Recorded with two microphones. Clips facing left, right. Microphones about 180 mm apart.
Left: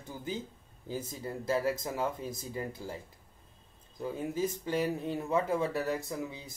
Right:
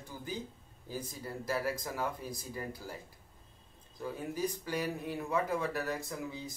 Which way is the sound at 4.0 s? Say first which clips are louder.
Left 3 dB; 25° left (ahead or behind).